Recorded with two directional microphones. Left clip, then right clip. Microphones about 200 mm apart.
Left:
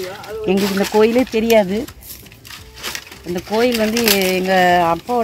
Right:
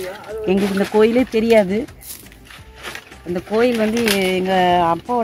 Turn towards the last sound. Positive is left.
turn(degrees=15)  # may be behind; listen again after turning